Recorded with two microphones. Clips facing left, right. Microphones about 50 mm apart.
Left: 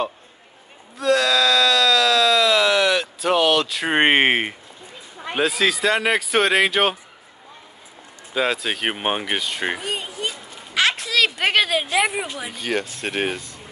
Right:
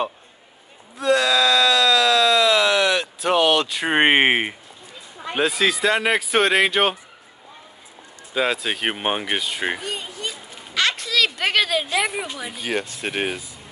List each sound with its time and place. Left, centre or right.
0.9 s a sound: centre
5.3 s speech: centre
8.3 s a woman's voice: centre
12.5 s speech: centre